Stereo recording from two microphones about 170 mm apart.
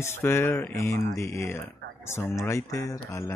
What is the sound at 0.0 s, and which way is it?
Speech, 15° left (ahead or behind).